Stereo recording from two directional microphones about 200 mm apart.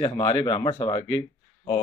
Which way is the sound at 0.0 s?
20° left (ahead or behind).